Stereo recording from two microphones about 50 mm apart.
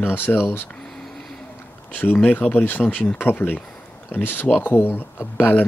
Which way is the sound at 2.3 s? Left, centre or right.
Left.